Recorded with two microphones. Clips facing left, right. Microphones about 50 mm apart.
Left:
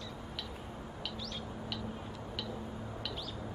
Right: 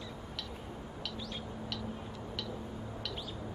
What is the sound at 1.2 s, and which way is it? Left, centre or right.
Vehicle, centre.